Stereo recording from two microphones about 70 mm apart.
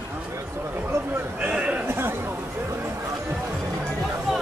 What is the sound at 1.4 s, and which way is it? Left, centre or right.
Speech, centre.